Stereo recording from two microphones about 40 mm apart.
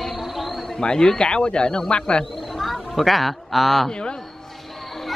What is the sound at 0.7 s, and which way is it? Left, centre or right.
A man's voice, centre.